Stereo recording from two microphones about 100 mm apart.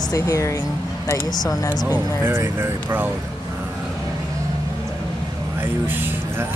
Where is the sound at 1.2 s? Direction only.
40° left (ahead or behind).